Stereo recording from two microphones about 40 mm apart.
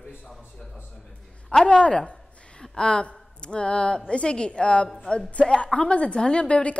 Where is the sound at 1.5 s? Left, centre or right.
Centre.